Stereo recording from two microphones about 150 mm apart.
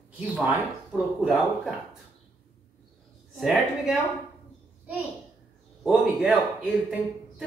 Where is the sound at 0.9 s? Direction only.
Centre (ahead or behind).